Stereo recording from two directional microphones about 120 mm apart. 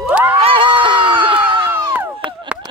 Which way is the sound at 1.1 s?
45° right (ahead or behind).